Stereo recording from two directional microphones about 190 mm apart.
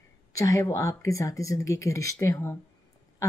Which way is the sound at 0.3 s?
15° left (ahead or behind).